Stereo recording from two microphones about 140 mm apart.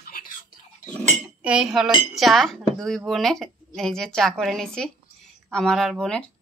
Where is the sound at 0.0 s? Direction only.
90° left; by 0.9 s 70° left (ahead or behind).